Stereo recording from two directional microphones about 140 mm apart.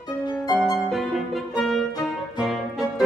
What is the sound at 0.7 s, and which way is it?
Music, centre (ahead or behind).